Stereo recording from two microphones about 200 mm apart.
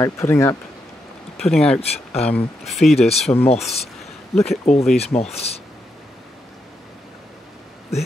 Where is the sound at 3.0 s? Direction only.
30° left (ahead or behind).